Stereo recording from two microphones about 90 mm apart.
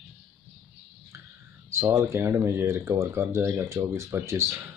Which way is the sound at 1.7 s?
30° right (ahead or behind).